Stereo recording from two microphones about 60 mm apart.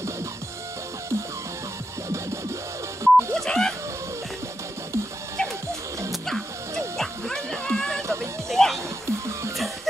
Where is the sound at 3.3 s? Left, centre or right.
Centre.